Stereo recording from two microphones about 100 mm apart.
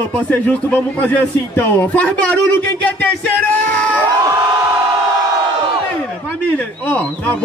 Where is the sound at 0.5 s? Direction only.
15° left (ahead or behind).